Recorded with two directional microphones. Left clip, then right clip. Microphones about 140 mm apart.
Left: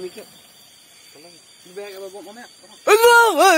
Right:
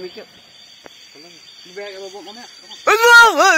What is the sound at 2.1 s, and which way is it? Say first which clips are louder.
Speech: right 3 dB; 25° right (ahead or behind).